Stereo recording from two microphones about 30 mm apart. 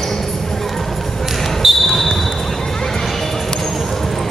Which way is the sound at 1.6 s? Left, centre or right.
Centre.